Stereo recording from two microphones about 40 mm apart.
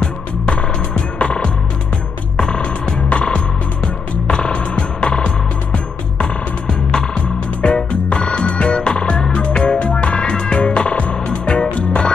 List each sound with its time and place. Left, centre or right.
0.0 s music: left